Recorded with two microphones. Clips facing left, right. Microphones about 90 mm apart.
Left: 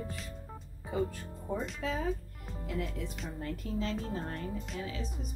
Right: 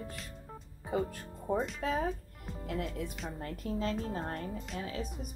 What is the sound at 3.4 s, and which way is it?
Speech, 45° right (ahead or behind).